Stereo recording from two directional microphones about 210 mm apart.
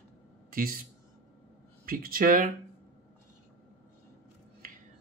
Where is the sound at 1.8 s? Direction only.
45° right (ahead or behind).